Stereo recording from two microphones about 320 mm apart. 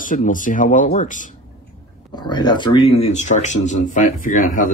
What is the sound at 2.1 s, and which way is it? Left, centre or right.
Speech, centre.